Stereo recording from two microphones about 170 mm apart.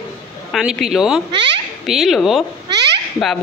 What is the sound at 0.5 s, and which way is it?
Speech, centre (ahead or behind).